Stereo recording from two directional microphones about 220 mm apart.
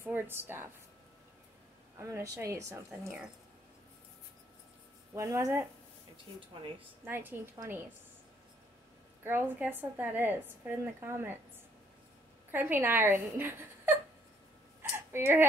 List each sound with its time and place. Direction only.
0.0 s a woman's voice: 10° right (ahead or behind)
2.0 s a woman's voice: 10° right (ahead or behind)
5.1 s a woman's voice: 15° right (ahead or behind)
7.1 s a woman's voice: 10° right (ahead or behind)
9.2 s a woman's voice: 10° right (ahead or behind)
12.4 s a woman's voice: 10° right (ahead or behind)
14.8 s a sound: 10° right (ahead or behind)